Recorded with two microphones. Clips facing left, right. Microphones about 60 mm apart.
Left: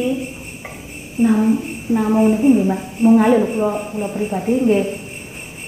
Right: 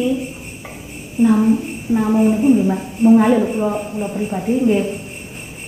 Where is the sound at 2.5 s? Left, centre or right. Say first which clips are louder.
Even; centre.